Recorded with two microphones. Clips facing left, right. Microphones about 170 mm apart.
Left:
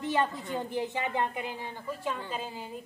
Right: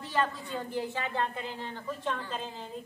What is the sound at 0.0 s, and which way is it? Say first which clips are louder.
A woman's voice: left 2 dB; 20° left (ahead or behind).